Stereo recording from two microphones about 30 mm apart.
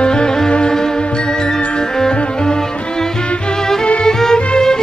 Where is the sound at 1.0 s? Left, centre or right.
Left.